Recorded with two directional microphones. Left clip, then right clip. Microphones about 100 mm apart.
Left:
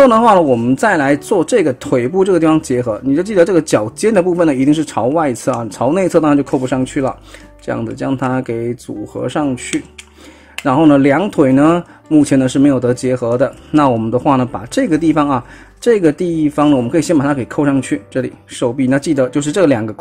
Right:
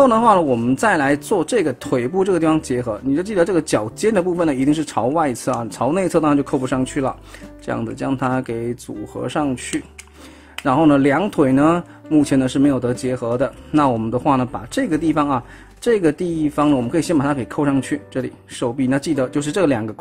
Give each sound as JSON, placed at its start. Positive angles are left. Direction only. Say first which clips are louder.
{"t": 0.0, "sound": "speech", "louder": "left 5 dB", "side_deg": 25}